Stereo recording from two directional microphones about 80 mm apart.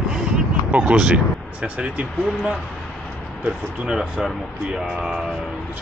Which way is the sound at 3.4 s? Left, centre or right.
Centre.